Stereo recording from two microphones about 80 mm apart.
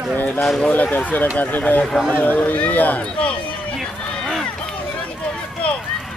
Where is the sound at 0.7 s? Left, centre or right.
Centre.